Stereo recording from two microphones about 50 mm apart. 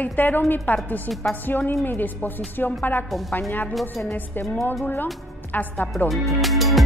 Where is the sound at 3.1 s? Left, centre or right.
Centre.